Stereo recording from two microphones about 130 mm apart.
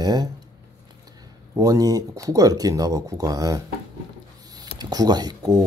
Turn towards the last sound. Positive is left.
turn(degrees=-30)  # may be behind; listen again after turning